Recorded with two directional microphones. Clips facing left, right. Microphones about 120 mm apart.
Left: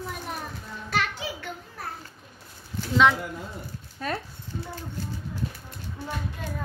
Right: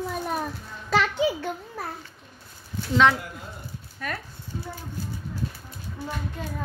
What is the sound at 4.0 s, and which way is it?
Speech, 30° left (ahead or behind).